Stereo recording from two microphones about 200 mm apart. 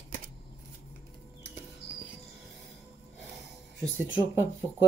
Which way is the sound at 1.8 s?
55° left (ahead or behind).